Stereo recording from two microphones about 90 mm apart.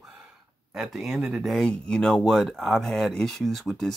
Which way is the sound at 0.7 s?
Centre (ahead or behind).